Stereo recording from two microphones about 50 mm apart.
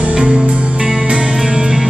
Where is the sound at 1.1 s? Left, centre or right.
Centre.